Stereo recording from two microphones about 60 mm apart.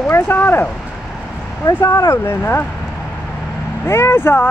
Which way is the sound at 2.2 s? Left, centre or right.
Left.